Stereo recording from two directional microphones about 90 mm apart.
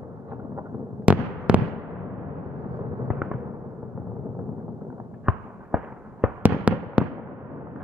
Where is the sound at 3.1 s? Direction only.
10° right (ahead or behind).